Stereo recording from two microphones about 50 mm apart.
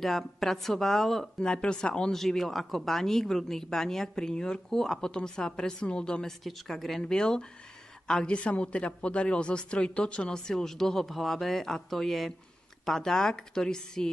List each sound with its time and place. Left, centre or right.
0.0 s speech: centre
1.4 s speech: centre
2.1 s speech: centre
6.4 s speech: centre
7.0 s speech: centre